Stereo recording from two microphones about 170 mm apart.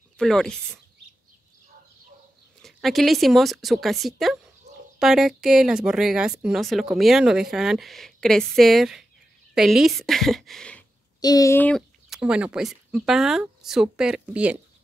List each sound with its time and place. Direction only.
0.2 s speech: 5° left (ahead or behind)
2.6 s speech: centre (ahead or behind)
11.1 s speech: 20° left (ahead or behind)
12.1 s speech: 5° right (ahead or behind)